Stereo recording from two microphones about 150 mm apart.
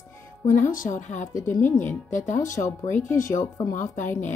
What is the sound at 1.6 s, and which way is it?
Speech, 15° left (ahead or behind).